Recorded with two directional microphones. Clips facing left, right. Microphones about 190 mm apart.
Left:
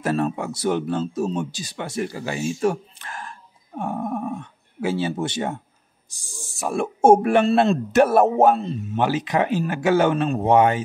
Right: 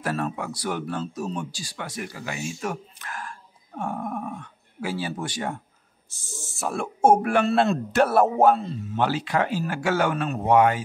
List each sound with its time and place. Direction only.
0.0 s speech: 25° left (ahead or behind)